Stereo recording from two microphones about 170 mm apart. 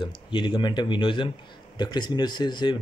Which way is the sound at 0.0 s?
30° left (ahead or behind).